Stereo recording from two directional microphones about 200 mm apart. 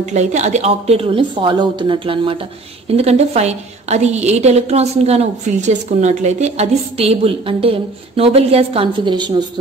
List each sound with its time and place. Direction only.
0.0 s a woman's voice: 35° right (ahead or behind)